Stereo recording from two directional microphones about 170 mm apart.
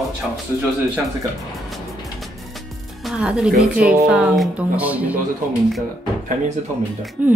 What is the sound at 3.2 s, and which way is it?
A woman's voice, 5° right (ahead or behind).